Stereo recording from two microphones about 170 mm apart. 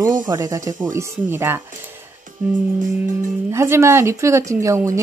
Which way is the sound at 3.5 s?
15° right (ahead or behind).